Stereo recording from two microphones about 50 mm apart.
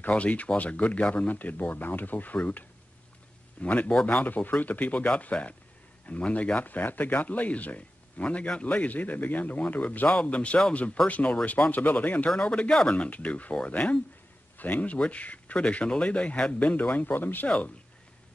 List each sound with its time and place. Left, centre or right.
0.0 s speech: left
3.6 s speech: left
17.5 s speech: left